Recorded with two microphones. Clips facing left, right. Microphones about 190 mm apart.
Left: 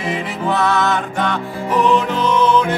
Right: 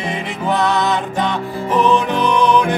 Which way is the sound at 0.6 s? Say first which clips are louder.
Even; 20° right (ahead or behind).